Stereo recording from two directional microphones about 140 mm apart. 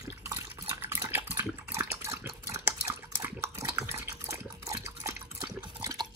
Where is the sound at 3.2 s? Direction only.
20° right (ahead or behind).